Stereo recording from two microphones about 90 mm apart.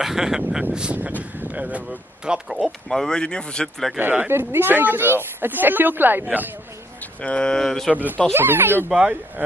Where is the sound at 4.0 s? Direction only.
20° right (ahead or behind).